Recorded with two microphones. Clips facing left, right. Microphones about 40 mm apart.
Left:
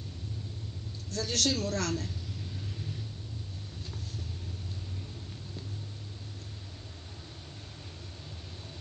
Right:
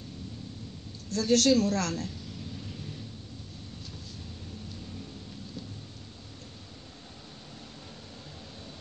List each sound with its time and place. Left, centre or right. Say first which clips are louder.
1.2 s a woman's voice: right 8 dB; right